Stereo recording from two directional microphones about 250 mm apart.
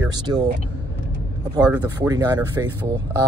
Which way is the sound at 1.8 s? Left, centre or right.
Centre.